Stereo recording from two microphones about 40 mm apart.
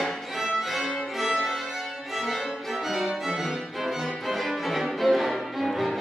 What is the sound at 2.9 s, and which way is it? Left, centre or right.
Music, centre.